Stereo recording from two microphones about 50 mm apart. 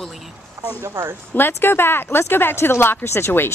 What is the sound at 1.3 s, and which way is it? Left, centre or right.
Speech, left.